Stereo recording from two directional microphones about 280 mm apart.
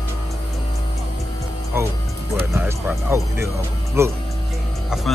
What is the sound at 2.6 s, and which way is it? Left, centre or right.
Music, centre.